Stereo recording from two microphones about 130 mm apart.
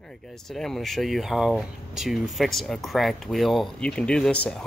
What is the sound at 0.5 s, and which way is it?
Speech, 5° left (ahead or behind).